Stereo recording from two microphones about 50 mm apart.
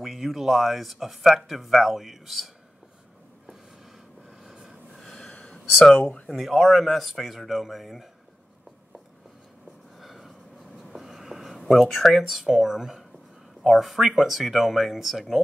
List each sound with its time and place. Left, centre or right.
0.0 s speech: centre
4.4 s vehicle: centre
5.0 s gasp: centre
5.5 s a sound: centre
5.9 s speech: left
6.2 s speech: centre
9.9 s a sound: centre
13.6 s speech: centre